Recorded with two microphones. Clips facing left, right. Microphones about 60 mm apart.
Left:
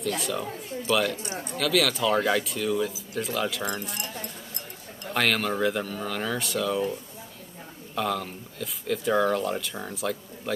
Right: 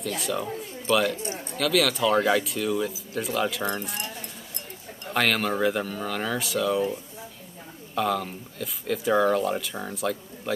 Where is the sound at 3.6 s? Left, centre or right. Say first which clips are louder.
Right 2 dB; centre.